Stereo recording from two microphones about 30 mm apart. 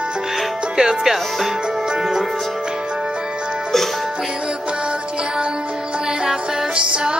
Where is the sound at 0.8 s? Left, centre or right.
Centre.